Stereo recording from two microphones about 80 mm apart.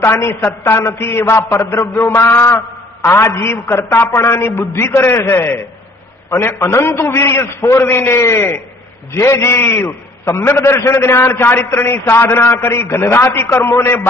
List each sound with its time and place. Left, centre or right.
0.0 s a man's voice: left